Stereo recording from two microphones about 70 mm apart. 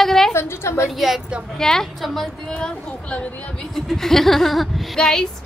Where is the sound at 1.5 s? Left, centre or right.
Centre.